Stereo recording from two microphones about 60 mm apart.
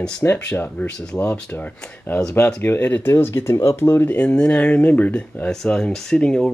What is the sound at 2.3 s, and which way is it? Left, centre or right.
Speech, left.